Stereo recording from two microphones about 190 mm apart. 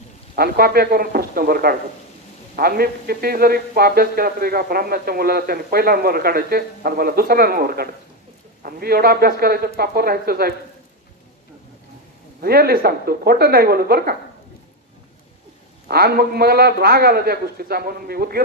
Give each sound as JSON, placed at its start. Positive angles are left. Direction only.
{"t": 0.4, "sound": "speech", "side_deg": -55}
{"t": 12.4, "sound": "speech", "side_deg": -55}
{"t": 15.9, "sound": "speech", "side_deg": -55}